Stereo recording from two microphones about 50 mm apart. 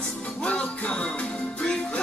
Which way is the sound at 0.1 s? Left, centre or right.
Left.